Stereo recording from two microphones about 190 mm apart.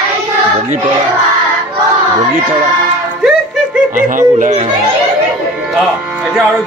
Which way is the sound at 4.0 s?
45° right (ahead or behind).